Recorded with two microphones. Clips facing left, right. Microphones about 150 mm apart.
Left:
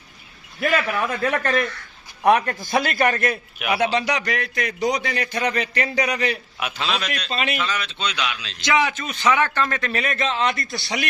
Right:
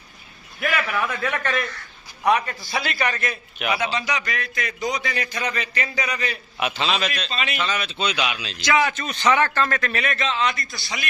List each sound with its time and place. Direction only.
0.9 s a man's voice: 35° left (ahead or behind)
2.2 s a man's voice: 55° left (ahead or behind)
3.7 s a man's voice: 65° left (ahead or behind)
6.6 s a man's voice: centre (ahead or behind)
8.6 s a man's voice: 20° left (ahead or behind)
9.0 s a man's voice: 5° left (ahead or behind)
9.8 s a man's voice: 30° left (ahead or behind)
10.1 s a man's voice: 50° left (ahead or behind)